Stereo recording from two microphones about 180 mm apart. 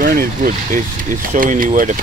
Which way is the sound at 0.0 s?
50° right (ahead or behind).